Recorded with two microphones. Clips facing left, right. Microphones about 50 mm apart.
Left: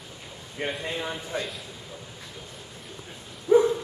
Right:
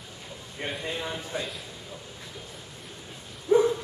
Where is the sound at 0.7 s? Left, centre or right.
Centre.